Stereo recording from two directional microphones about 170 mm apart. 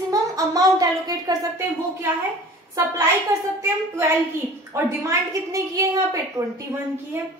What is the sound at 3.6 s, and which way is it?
A woman's voice, 15° right (ahead or behind).